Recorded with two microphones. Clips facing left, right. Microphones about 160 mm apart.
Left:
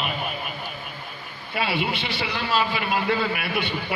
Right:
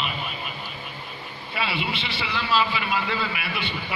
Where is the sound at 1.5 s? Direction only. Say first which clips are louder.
Left 3 dB; 45° left (ahead or behind).